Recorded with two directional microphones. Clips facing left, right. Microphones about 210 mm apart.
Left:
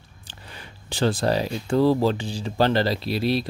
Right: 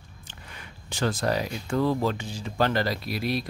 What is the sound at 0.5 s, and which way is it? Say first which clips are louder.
Speech: left 4 dB; 30° left (ahead or behind).